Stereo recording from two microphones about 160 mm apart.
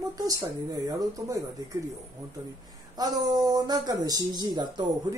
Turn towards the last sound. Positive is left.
turn(degrees=-30)  # may be behind; listen again after turning